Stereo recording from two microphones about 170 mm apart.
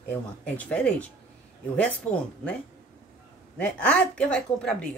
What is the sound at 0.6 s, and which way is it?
A woman's voice, 10° left (ahead or behind).